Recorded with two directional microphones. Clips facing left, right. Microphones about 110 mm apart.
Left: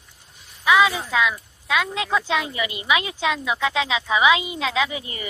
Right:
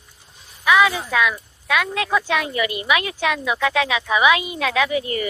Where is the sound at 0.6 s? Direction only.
20° left (ahead or behind).